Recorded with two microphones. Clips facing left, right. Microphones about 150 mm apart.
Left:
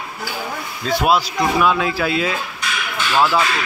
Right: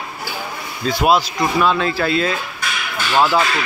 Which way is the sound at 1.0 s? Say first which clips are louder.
Right 2 dB; 5° left (ahead or behind).